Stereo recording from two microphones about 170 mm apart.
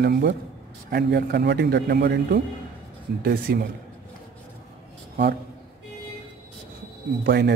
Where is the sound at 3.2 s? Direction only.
60° right (ahead or behind).